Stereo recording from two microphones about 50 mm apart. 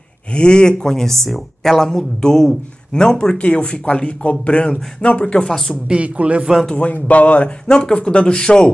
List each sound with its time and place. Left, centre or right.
0.3 s speech: centre
5.4 s speech: centre
5.9 s a man's voice: right
6.7 s speech: left
7.6 s speech: centre